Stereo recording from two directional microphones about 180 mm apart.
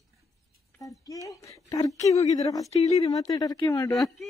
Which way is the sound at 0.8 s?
20° left (ahead or behind).